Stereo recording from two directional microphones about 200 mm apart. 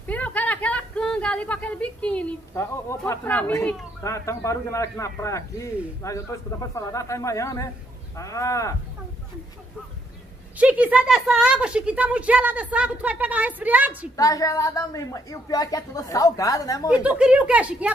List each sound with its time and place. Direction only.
0.0 s a woman's voice: 5° left (ahead or behind)
10.6 s a woman's voice: 5° right (ahead or behind)
14.1 s a woman's voice: 15° left (ahead or behind)
16.9 s a woman's voice: 5° right (ahead or behind)